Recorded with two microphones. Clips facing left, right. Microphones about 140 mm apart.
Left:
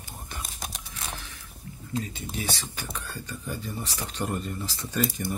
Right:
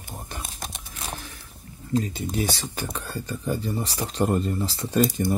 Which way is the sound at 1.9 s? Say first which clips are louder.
Right 7 dB; 35° right (ahead or behind).